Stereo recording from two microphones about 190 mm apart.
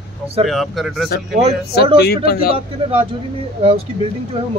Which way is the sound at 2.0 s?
55° left (ahead or behind).